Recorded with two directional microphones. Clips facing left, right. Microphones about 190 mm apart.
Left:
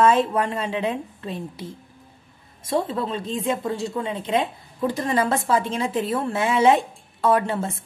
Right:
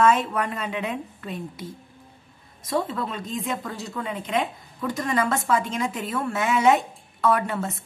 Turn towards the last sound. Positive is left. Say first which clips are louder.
# left 3 dB
turn(degrees=30)  # may be behind; listen again after turning